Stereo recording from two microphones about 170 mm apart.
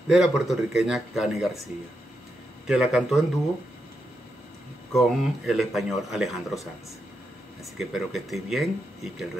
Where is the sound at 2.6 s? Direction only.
5° right (ahead or behind).